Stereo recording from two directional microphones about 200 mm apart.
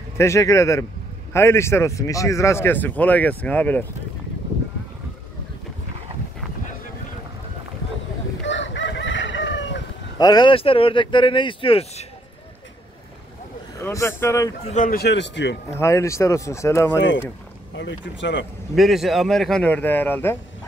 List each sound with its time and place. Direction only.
0.2 s speech: 15° left (ahead or behind)
8.5 s chicken: 65° left (ahead or behind)
10.1 s speech: 20° left (ahead or behind)
13.7 s speech: 15° left (ahead or behind)
14.6 s a man's voice: 35° left (ahead or behind); by 15.5 s 60° left (ahead or behind)
15.7 s speech: 15° left (ahead or behind)
17.7 s a man's voice: 65° left (ahead or behind)
18.8 s speech: centre (ahead or behind)